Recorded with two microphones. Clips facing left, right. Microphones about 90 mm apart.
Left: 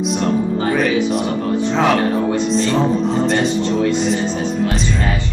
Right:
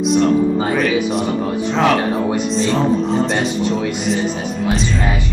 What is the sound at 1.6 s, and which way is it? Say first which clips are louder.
A man's voice: even; centre (ahead or behind).